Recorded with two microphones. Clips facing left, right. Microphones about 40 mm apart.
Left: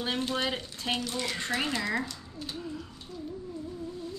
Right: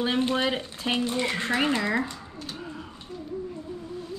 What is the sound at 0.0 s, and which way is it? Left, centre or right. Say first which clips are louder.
Speech: right 6 dB; right.